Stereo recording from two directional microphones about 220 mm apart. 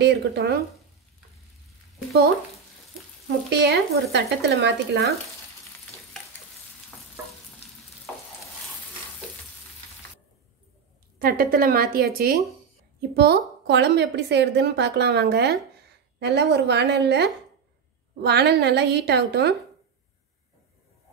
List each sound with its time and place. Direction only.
0.0 s a woman's voice: 50° right (ahead or behind)
3.3 s a woman's voice: 50° right (ahead or behind)
11.1 s a woman's voice: 40° right (ahead or behind)